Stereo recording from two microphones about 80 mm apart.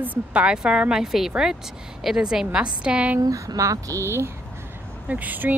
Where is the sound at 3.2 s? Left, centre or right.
Right.